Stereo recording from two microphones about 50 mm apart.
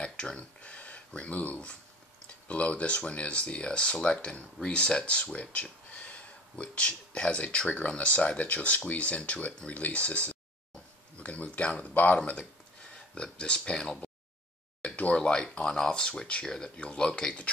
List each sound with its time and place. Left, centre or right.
0.0 s a sound: centre
0.6 s speech: left
12.9 s speech: centre
14.8 s speech: left